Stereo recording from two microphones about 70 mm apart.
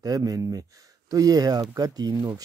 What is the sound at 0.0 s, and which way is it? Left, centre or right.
Speech, right.